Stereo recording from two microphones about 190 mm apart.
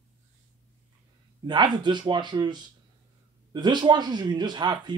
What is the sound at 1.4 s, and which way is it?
Speech, 25° right (ahead or behind).